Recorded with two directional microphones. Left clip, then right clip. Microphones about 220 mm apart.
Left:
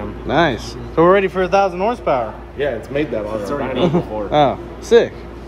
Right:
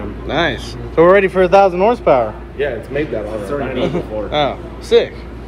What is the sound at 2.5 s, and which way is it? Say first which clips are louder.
Speech: even; 45° left (ahead or behind).